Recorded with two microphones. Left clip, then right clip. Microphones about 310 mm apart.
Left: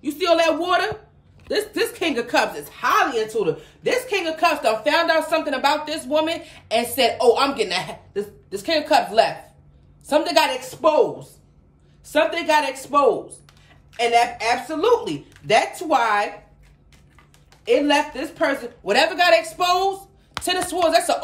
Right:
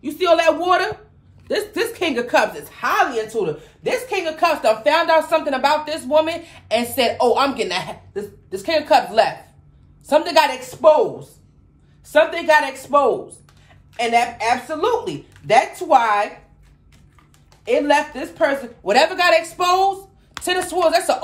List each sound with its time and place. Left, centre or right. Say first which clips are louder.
0.0 s a woman's voice: right 3 dB; centre
12.1 s a woman's voice: right 4 dB; centre
17.6 s a woman's voice: right 1 dB; centre
20.4 s a sound: even; centre
20.7 s a woman's voice: right 1 dB; centre